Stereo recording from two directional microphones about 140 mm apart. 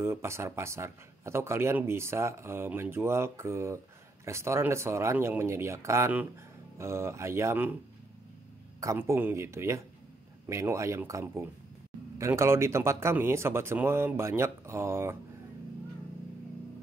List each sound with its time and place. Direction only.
0.0 s speech: 20° right (ahead or behind)
8.8 s speech: 20° right (ahead or behind)